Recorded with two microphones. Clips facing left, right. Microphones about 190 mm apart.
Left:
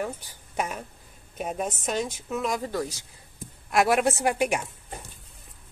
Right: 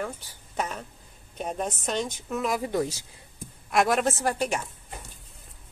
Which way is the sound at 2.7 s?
25° right (ahead or behind).